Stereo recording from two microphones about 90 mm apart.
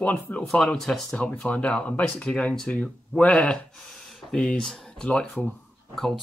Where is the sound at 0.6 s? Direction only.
5° left (ahead or behind).